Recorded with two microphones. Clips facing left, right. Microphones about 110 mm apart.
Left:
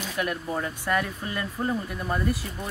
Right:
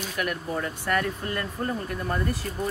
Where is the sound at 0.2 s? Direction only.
20° left (ahead or behind).